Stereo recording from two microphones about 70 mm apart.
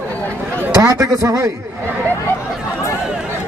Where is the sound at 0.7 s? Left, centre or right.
Right.